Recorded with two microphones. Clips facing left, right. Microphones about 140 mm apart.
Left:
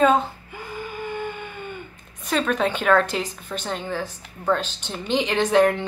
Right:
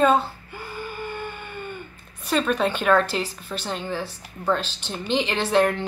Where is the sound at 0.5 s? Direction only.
Centre (ahead or behind).